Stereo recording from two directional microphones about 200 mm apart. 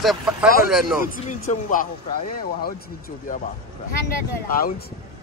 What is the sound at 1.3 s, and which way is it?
Speech, 40° left (ahead or behind).